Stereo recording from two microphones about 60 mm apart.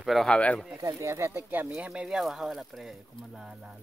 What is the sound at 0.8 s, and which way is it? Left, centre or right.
Speech, right.